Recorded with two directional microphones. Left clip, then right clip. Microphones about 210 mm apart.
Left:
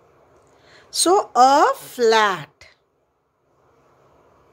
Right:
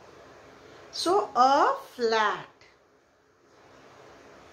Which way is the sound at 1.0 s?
50° left (ahead or behind).